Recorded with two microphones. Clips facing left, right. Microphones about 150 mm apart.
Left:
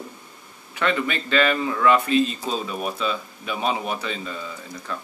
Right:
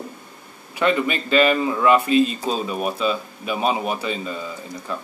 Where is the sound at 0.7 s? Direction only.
15° right (ahead or behind).